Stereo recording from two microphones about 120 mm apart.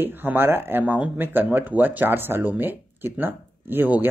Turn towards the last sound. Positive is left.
turn(degrees=-15)  # may be behind; listen again after turning